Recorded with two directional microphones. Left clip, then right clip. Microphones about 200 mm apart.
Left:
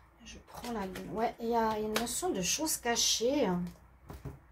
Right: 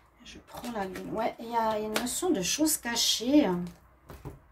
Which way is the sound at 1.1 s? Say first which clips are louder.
Right 1 dB; 35° right (ahead or behind).